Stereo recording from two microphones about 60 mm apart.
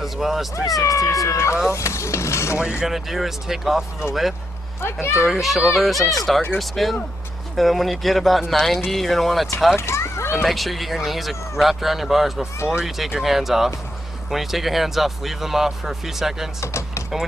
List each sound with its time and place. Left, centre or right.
0.0 s speech: centre
0.7 s speech: left
2.8 s speech: centre
9.8 s a sound: left
10.3 s speech: centre
16.6 s door: left